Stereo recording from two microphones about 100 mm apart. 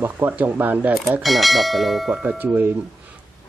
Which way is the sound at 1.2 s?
Centre (ahead or behind).